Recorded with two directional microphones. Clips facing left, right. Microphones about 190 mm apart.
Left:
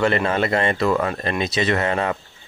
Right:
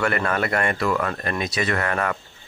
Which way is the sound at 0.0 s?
25° left (ahead or behind).